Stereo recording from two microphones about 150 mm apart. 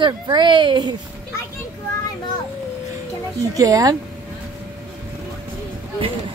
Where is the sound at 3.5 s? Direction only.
25° right (ahead or behind).